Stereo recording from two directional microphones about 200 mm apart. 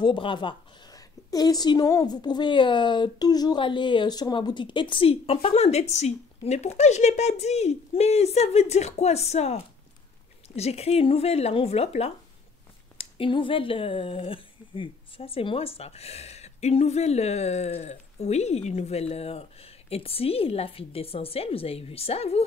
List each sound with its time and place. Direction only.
0.0 s a woman's voice: 25° left (ahead or behind)